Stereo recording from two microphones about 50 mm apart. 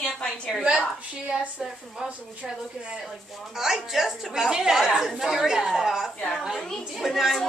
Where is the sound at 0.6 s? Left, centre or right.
Centre.